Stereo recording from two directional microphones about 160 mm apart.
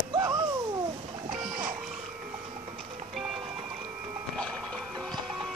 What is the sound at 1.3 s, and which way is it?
Music, 55° right (ahead or behind).